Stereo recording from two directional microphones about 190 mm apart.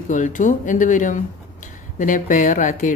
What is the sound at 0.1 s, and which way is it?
A woman's voice, 40° left (ahead or behind).